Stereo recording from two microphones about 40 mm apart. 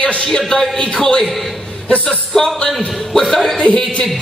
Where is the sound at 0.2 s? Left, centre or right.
Centre.